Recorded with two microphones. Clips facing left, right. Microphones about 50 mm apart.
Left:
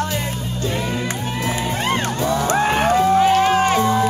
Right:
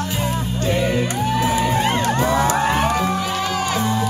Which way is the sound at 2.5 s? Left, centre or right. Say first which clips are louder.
Left 1 dB; left.